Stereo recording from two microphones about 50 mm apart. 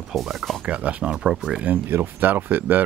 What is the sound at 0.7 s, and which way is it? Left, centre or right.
Speech, right.